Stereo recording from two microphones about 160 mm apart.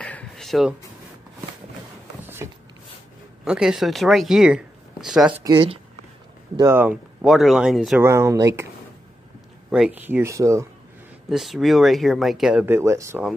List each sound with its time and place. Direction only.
0.0 s a sound: 5° left (ahead or behind)
2.2 s a sound: 15° right (ahead or behind)
3.4 s speech: 5° right (ahead or behind)
5.4 s speech: 25° right (ahead or behind)
6.7 s speech: 10° right (ahead or behind)
8.0 s speech: 15° right (ahead or behind)
9.7 s speech: 5° right (ahead or behind)
11.2 s speech: centre (ahead or behind)
12.6 s speech: 15° right (ahead or behind)